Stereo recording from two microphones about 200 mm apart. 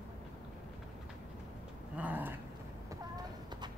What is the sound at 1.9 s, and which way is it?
Dog, 10° right (ahead or behind).